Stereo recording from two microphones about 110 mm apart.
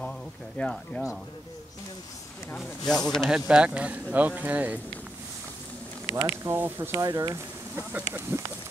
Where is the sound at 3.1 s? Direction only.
Centre (ahead or behind).